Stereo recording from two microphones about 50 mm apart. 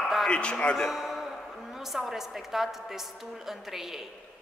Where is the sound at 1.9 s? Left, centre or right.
Centre.